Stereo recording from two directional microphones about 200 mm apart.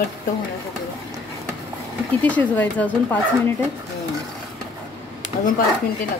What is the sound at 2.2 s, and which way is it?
Speech, 5° left (ahead or behind).